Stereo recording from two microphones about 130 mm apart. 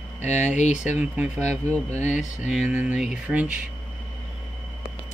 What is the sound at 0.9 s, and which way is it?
Speech, 10° right (ahead or behind).